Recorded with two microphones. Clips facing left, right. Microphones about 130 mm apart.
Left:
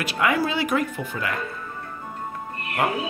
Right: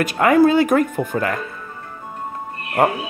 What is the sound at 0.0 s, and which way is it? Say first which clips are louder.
Speech: right 9 dB; 45° right (ahead or behind).